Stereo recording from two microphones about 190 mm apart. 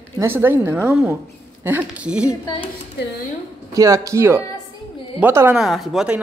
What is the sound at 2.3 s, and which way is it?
Speech, 20° left (ahead or behind).